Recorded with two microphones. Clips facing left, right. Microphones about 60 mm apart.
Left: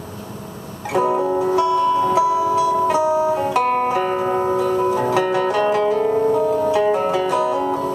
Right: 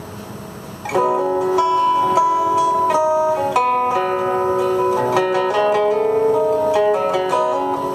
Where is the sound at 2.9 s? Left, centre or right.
Right.